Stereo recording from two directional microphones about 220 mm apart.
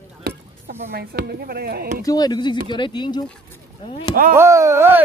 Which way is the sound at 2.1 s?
20° left (ahead or behind).